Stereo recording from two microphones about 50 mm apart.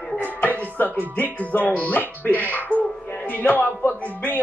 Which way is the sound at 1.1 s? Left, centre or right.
Left.